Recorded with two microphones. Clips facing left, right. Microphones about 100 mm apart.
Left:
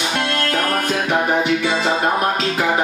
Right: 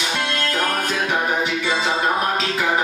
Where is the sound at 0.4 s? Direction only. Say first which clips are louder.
Left 2 dB; 50° left (ahead or behind).